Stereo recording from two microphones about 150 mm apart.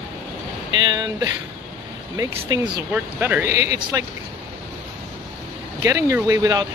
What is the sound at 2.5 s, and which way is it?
Speech, 25° right (ahead or behind).